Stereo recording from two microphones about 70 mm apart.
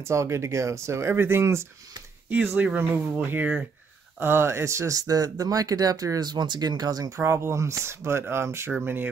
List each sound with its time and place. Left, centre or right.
0.1 s speech: right
2.2 s speech: right
4.2 s speech: right
7.2 s speech: right